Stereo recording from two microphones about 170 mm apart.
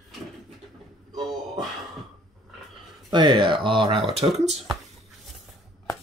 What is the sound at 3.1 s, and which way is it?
Speech, 30° right (ahead or behind).